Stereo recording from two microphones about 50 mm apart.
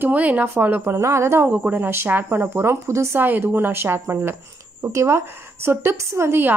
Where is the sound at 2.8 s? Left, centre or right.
Right.